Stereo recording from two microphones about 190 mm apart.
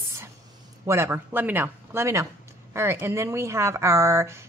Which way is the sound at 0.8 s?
15° right (ahead or behind).